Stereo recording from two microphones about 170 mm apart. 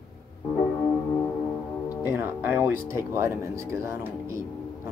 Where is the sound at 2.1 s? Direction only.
15° right (ahead or behind).